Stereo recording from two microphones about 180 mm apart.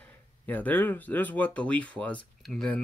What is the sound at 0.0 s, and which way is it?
Speech, 10° left (ahead or behind).